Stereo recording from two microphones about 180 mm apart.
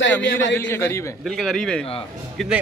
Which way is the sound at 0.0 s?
80° left.